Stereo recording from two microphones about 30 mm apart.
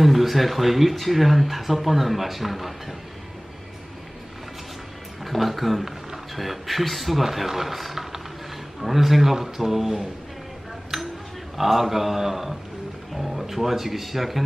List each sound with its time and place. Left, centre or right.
0.0 s speech: centre
5.2 s a man's voice: centre
10.9 s a sound: centre
11.5 s a man's voice: centre